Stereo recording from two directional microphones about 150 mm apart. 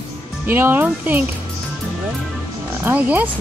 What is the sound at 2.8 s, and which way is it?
Speech, 10° right (ahead or behind).